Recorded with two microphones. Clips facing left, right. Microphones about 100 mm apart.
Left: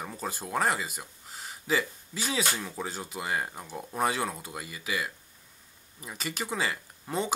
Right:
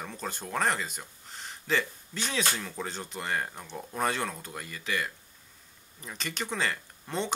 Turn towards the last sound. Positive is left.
turn(degrees=5)  # may be behind; listen again after turning